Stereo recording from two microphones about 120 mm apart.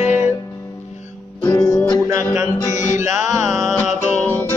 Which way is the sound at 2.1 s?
25° right (ahead or behind).